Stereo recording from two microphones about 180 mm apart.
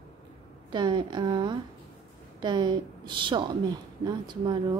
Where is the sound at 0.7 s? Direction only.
25° right (ahead or behind).